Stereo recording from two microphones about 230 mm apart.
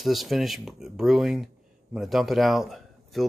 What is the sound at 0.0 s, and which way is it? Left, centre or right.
A man's voice, centre.